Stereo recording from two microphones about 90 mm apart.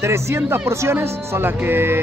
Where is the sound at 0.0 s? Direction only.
30° right (ahead or behind).